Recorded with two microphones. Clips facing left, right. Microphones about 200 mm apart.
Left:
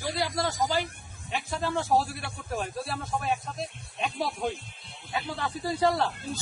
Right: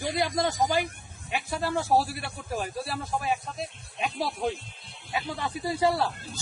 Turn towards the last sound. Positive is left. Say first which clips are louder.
# even
turn(degrees=-10)  # may be behind; listen again after turning